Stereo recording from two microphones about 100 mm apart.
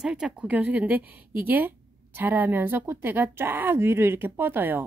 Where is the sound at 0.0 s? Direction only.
10° right (ahead or behind).